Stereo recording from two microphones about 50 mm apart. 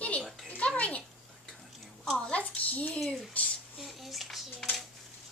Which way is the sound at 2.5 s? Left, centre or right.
Left.